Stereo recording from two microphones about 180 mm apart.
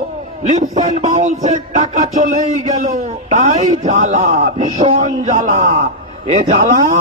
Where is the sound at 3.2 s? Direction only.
40° right (ahead or behind).